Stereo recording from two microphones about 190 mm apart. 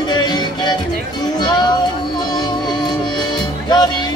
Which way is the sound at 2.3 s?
20° left (ahead or behind).